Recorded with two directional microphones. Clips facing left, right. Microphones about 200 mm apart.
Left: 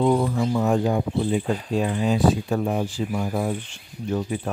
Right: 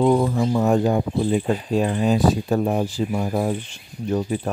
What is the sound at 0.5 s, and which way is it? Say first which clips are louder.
Speech: right 3 dB; 40° right (ahead or behind).